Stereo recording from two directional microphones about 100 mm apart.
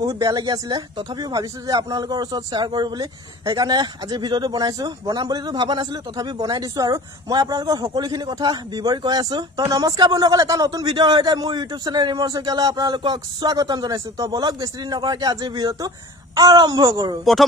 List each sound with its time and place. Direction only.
0.2 s speech: 40° right (ahead or behind)
17.2 s speech: centre (ahead or behind)